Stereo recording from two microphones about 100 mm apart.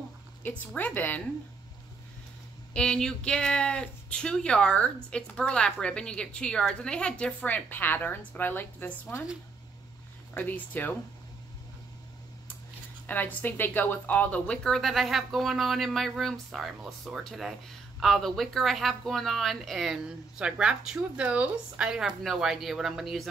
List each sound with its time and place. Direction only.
0.4 s speech: 15° left (ahead or behind)
2.7 s speech: 5° left (ahead or behind)
10.3 s speech: 15° left (ahead or behind)
13.0 s speech: 20° left (ahead or behind); by 23.2 s centre (ahead or behind)